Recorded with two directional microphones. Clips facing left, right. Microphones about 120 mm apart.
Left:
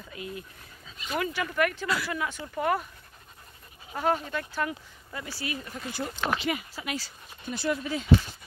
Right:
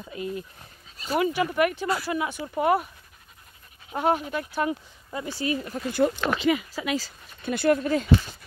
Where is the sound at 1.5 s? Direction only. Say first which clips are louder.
Right 3 dB; 20° right (ahead or behind).